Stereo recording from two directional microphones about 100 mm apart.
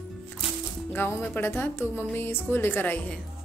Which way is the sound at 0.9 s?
20° left (ahead or behind).